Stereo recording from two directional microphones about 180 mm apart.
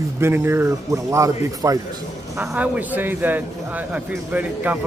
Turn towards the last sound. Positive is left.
turn(degrees=-10)  # may be behind; listen again after turning